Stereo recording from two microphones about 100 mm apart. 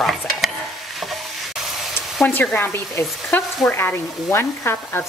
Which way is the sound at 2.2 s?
15° left (ahead or behind).